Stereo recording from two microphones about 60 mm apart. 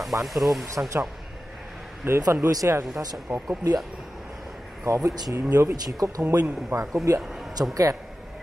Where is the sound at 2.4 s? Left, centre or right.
Right.